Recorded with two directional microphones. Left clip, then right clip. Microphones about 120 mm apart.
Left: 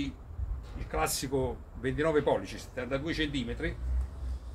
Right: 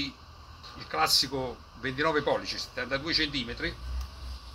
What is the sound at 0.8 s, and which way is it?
Speech, 40° left (ahead or behind).